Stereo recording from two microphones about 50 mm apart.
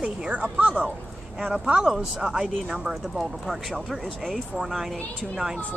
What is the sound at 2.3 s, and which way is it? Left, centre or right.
Speech, centre.